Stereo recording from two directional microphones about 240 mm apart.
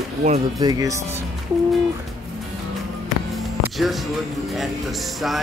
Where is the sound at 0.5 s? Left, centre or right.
Centre.